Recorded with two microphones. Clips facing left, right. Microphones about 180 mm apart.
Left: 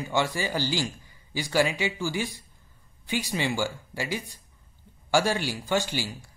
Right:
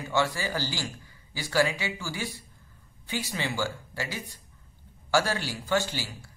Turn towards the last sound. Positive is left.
turn(degrees=15)  # may be behind; listen again after turning